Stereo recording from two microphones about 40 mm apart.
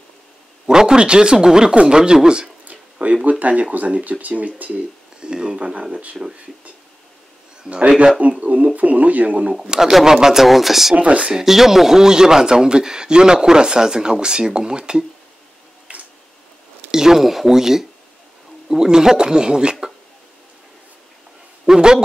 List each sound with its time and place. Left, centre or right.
0.7 s speech: centre
2.7 s a sound: right
3.3 s speech: right
5.2 s speech: right
8.2 s speech: right
9.5 s speech: centre
11.0 s speech: right
11.3 s speech: centre
15.9 s tick-tock: right
16.9 s a sound: centre
18.7 s speech: centre
21.6 s a man's voice: centre